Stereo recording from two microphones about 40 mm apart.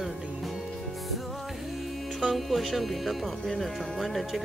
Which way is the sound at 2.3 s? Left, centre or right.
Centre.